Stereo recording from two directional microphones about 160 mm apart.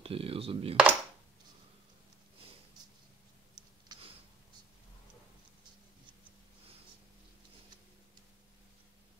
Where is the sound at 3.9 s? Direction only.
25° right (ahead or behind).